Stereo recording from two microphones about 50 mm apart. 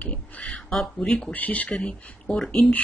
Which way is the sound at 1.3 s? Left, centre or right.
Left.